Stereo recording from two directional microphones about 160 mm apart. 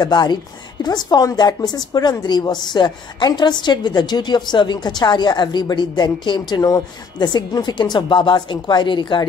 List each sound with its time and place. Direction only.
0.0 s a woman's voice: 25° left (ahead or behind)